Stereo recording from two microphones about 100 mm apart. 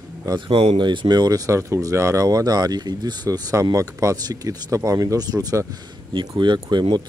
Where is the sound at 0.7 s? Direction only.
50° right (ahead or behind).